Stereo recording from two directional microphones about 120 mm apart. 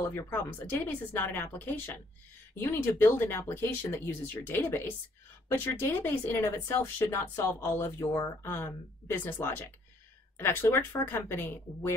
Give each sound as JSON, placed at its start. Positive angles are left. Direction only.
{"t": 0.1, "sound": "speech", "side_deg": 20}